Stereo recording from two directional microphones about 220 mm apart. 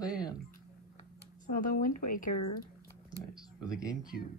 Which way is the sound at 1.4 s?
40° left (ahead or behind).